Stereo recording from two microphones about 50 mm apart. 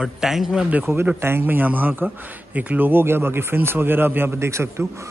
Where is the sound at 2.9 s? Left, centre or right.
Right.